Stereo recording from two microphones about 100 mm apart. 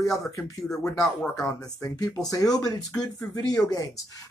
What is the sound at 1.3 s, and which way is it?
Speech, 35° left (ahead or behind).